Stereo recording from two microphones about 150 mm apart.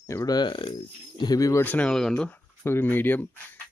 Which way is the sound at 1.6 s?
10° left (ahead or behind).